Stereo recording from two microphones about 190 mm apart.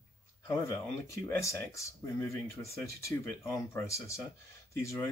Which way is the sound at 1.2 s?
15° left (ahead or behind).